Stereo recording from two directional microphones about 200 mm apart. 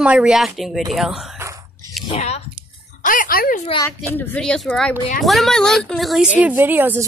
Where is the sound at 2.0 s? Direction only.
30° left (ahead or behind).